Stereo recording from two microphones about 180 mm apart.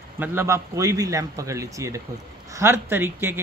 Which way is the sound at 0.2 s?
10° right (ahead or behind).